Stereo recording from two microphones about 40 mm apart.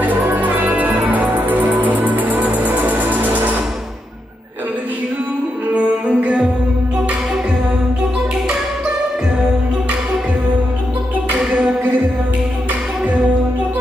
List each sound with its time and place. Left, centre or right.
0.0 s music: right
5.8 s music: right